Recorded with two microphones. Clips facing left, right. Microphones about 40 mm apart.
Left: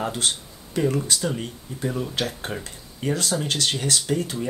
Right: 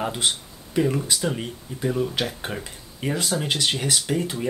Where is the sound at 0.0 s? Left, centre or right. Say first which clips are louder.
Right 1 dB; centre.